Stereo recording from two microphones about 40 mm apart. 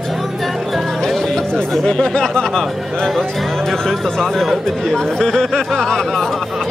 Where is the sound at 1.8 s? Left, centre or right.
Centre.